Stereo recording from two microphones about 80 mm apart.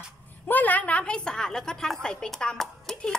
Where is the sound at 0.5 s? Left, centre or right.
Left.